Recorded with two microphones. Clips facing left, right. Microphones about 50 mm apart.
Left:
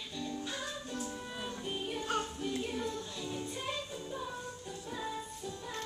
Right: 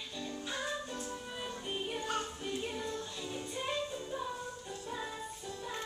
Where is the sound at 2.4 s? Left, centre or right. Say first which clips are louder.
Left 2 dB; centre.